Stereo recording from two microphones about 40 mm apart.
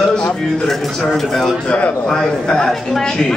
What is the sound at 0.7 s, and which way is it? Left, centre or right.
Speech, centre.